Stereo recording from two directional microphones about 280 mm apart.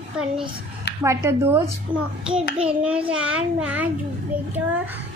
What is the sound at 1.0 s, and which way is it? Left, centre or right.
A woman's voice, centre.